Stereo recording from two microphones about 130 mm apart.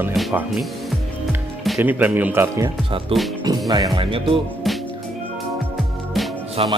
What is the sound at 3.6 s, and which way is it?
Speech, 30° right (ahead or behind).